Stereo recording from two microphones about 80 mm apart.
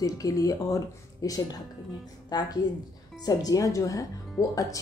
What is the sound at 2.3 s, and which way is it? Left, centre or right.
A woman's voice, left.